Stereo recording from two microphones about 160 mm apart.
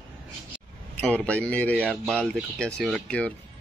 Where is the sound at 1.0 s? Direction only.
5° left (ahead or behind).